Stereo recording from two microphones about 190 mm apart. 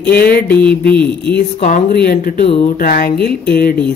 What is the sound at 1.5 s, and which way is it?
Speech, 45° left (ahead or behind).